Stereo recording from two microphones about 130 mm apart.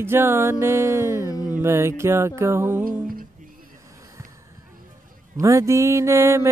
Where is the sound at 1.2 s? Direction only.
25° left (ahead or behind).